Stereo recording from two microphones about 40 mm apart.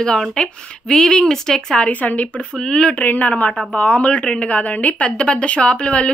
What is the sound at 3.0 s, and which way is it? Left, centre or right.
Speech, left.